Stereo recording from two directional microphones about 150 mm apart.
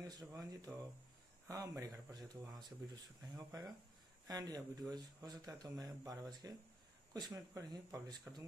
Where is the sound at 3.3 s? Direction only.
25° right (ahead or behind).